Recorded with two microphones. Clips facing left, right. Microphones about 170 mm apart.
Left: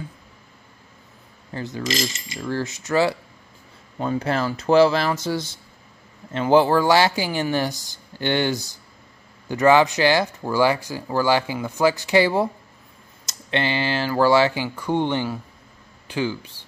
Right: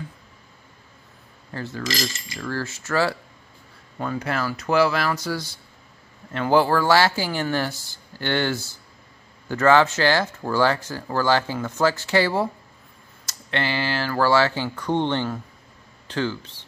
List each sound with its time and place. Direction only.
1.5 s coin: 15° left (ahead or behind)
1.8 s speech: 20° left (ahead or behind)